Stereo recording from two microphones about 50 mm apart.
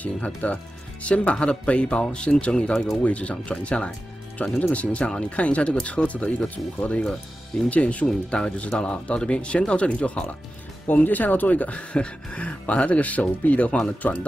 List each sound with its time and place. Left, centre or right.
0.0 s speech: left
10.9 s speech: left